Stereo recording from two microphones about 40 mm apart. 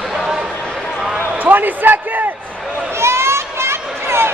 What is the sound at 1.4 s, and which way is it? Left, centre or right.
Basketball bounce, right.